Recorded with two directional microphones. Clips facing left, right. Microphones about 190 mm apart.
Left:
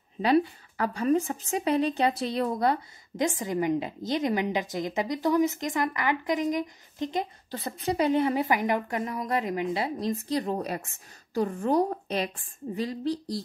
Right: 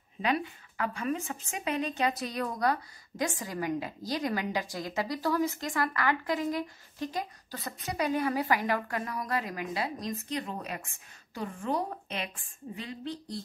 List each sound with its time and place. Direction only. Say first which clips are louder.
0.2 s a woman's voice: left 8 dB; 35° left (ahead or behind)